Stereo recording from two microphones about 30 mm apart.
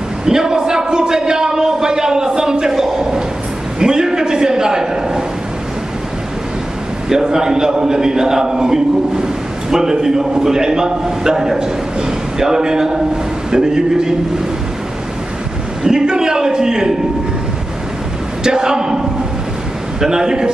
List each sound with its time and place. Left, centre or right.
0.2 s a sound: right
7.1 s a man's voice: centre
15.8 s a man's voice: right
18.4 s a man's voice: right
20.0 s a man's voice: right